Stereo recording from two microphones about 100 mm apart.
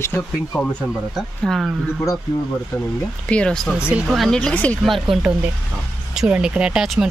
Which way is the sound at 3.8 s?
10° right (ahead or behind).